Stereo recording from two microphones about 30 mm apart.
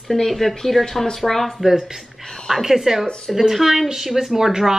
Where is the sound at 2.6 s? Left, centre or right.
Centre.